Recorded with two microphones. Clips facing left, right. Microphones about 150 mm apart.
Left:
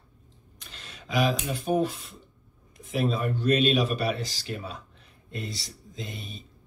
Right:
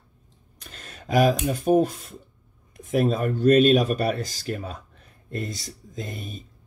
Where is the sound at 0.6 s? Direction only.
45° right (ahead or behind).